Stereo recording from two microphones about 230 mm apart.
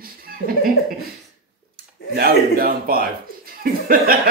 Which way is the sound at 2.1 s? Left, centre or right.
Right.